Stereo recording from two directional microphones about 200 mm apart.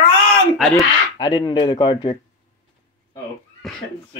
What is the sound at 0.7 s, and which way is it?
Speech, 20° left (ahead or behind).